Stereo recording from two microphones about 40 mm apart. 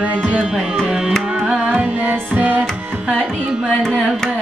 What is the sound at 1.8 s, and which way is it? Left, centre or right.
Music, right.